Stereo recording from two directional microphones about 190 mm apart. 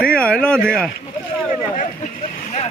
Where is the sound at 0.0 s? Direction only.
5° left (ahead or behind).